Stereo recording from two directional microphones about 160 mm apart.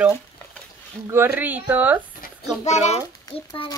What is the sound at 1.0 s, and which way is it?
Speech, 15° right (ahead or behind).